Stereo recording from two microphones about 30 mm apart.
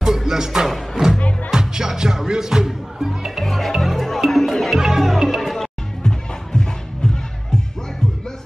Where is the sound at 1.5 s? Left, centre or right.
Right.